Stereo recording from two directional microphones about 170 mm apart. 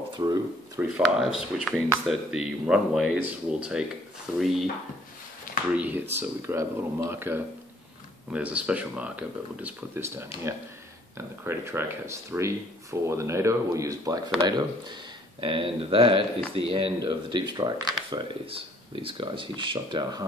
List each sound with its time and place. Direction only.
0.1 s speech: 25° right (ahead or behind)
0.7 s speech: 5° right (ahead or behind)
5.8 s speech: 10° right (ahead or behind)
15.4 s speech: 30° right (ahead or behind)